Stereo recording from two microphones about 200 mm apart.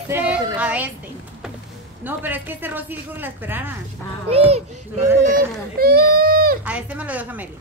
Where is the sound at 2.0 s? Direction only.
10° right (ahead or behind).